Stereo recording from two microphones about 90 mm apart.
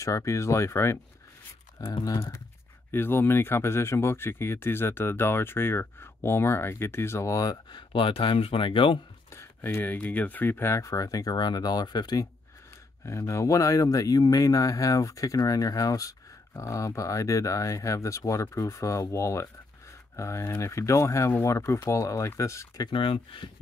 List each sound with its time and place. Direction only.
0.0 s speech: 35° left (ahead or behind)
1.8 s speech: 45° left (ahead or behind)
2.9 s speech: 25° left (ahead or behind)
7.7 s speech: 70° left (ahead or behind)
9.3 s speech: 30° left (ahead or behind); by 12.3 s 50° left (ahead or behind)
13.0 s speech: 35° left (ahead or behind)
22.8 s speech: 75° left (ahead or behind)